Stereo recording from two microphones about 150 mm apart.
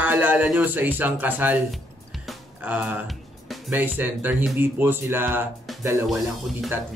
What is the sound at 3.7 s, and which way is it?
Speech, 10° right (ahead or behind).